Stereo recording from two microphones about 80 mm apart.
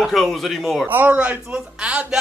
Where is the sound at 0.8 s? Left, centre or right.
Right.